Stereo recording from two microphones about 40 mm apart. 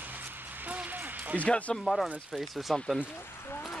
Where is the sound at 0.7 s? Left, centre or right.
Right.